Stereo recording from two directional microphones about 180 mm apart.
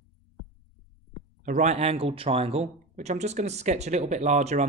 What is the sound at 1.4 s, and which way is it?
Speech, 40° right (ahead or behind).